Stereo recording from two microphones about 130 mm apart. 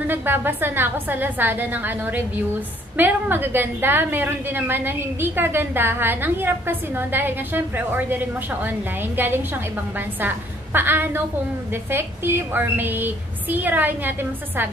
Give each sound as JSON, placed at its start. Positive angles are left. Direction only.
{"t": 0.0, "sound": "a woman's voice", "side_deg": -15}